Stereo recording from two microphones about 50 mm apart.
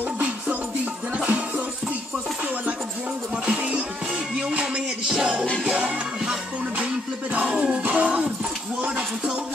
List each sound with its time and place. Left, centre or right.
1.1 s music: right
3.4 s music: right
7.4 s music: centre
8.8 s a sound: right